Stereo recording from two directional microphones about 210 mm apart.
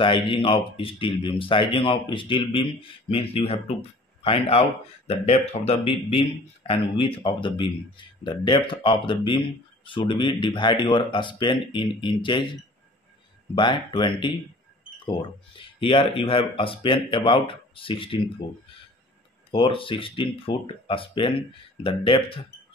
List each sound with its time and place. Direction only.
0.0 s speech: 25° left (ahead or behind)
13.6 s speech: 20° left (ahead or behind)
19.5 s speech: 25° left (ahead or behind)